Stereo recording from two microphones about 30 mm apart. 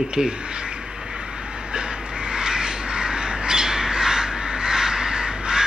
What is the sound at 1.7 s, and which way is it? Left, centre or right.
Crow, right.